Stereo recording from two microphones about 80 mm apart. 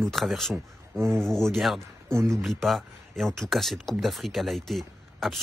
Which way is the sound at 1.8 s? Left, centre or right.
Right.